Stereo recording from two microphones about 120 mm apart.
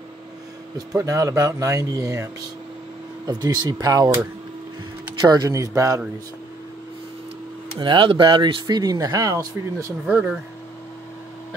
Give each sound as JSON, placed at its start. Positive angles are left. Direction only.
{"t": 0.9, "sound": "speech", "side_deg": -25}
{"t": 5.2, "sound": "speech", "side_deg": -35}
{"t": 7.8, "sound": "speech", "side_deg": -45}
{"t": 10.0, "sound": "speech", "side_deg": -10}